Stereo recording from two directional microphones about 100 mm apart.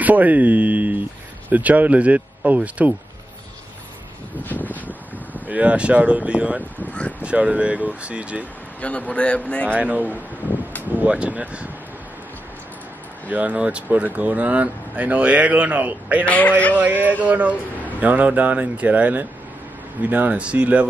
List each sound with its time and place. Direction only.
0.0 s speech: 15° right (ahead or behind)
4.4 s a sound: 15° left (ahead or behind)
4.8 s speech: 15° right (ahead or behind)
6.9 s speech: 15° left (ahead or behind)
7.2 s speech: 10° right (ahead or behind)
8.8 s speech: 15° left (ahead or behind)
9.7 s speech: 15° right (ahead or behind)
13.3 s speech: 15° right (ahead or behind)
16.3 s speech: 15° left (ahead or behind)
16.7 s speech: 20° right (ahead or behind)